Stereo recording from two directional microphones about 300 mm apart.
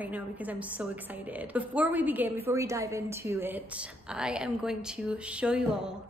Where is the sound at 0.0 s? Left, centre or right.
Centre.